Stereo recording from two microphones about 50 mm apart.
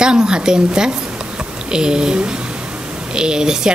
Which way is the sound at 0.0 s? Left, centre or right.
Centre.